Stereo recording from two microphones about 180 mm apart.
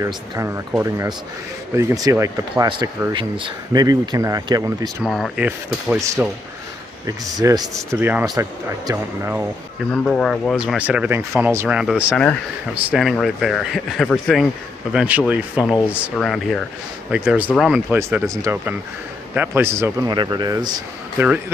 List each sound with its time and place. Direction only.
0.0 s speech: 15° right (ahead or behind)
5.0 s speech: centre (ahead or behind)
7.1 s speech: 20° right (ahead or behind)
10.0 s speech: 5° left (ahead or behind)
17.9 s speech: 15° right (ahead or behind)